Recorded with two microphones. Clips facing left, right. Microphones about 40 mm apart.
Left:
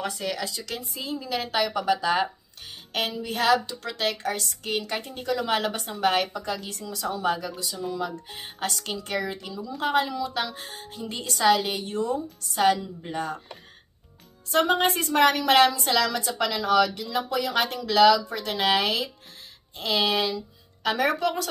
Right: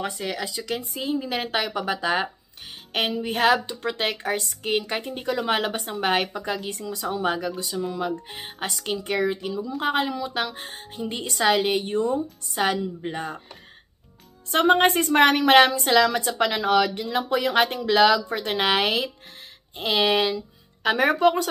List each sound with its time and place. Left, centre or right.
0.0 s speech: right
7.3 s a woman's voice: right
12.5 s a woman's voice: centre
14.5 s a woman's voice: right